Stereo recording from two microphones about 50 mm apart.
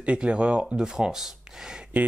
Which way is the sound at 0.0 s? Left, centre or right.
Right.